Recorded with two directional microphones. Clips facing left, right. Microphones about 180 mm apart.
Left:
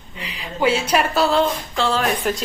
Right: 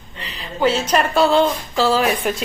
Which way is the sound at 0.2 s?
10° left (ahead or behind).